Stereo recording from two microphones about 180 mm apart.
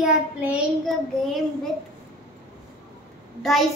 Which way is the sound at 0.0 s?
5° right (ahead or behind).